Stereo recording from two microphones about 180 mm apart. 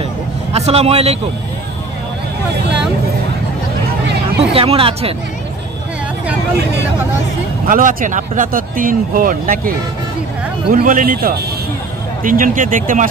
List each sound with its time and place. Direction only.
0.5 s speech: 35° right (ahead or behind)
4.6 s speech: 30° right (ahead or behind)
7.6 s speech: 50° right (ahead or behind)